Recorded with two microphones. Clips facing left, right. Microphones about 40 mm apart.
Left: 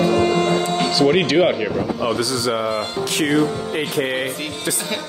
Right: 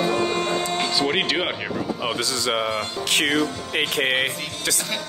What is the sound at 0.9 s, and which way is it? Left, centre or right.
Speech, centre.